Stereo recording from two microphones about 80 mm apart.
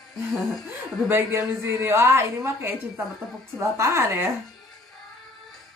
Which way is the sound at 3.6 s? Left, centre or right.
Right.